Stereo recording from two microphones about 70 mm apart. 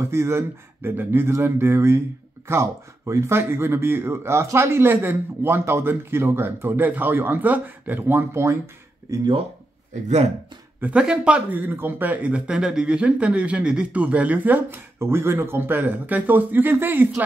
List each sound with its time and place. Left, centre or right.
0.0 s speech: right
9.1 s speech: right
10.8 s speech: centre